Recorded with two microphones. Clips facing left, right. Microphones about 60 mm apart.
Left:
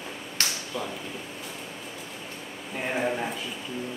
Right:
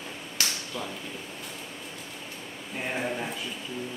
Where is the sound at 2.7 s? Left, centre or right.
Centre.